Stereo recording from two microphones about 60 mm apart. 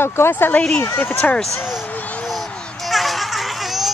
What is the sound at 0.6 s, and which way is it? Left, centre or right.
Speech, centre.